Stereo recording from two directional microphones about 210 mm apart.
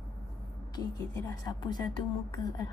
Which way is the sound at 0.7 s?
15° left (ahead or behind).